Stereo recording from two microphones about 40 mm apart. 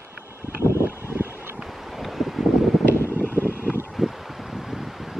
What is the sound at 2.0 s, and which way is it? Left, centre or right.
Vehicle, centre.